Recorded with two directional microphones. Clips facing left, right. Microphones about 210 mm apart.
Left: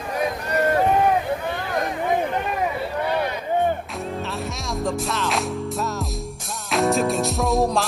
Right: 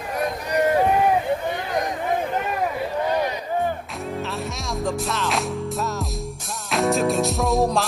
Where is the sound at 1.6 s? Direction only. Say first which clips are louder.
Even; 20° right (ahead or behind).